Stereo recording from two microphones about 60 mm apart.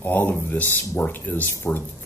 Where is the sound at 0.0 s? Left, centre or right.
Left.